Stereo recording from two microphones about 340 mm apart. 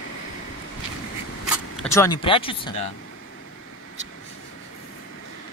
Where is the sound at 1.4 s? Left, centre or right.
Centre.